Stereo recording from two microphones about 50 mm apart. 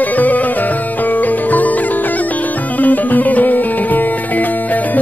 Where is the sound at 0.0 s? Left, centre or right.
Left.